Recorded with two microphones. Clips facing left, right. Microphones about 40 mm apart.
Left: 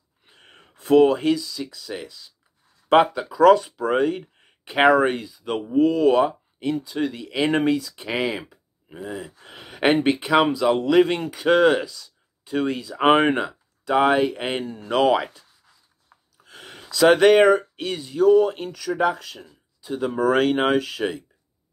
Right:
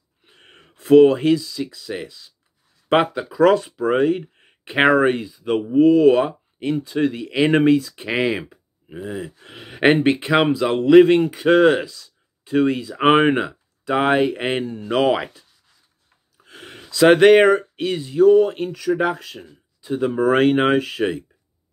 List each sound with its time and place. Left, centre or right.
0.2 s speech: centre
6.6 s speech: right; by 15.4 s centre
16.4 s a sound: centre
16.9 s speech: centre